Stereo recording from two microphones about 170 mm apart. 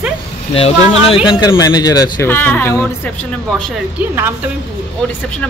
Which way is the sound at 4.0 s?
15° right (ahead or behind).